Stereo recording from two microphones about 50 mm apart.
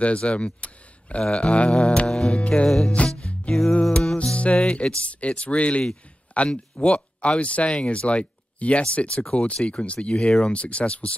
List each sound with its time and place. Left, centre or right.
0.0 s speech: left
2.0 s music: centre
2.3 s speech: left
3.3 s music: centre
4.2 s speech: left